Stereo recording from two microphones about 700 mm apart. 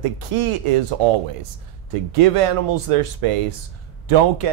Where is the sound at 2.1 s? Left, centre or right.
Right.